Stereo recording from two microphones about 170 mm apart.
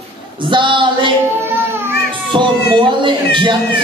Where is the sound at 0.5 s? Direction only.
30° right (ahead or behind).